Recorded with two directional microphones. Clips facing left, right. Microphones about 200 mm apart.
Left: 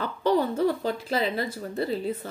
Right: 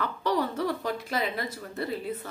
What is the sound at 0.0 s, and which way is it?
Speech, 30° left (ahead or behind).